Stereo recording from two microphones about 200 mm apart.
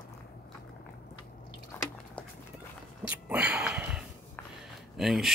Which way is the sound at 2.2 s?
5° left (ahead or behind).